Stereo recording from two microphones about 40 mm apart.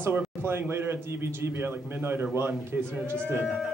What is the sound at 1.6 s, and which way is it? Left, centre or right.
Speech, right.